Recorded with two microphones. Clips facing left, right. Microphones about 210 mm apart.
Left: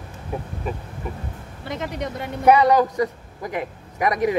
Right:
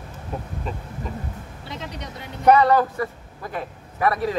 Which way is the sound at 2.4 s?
15° left (ahead or behind).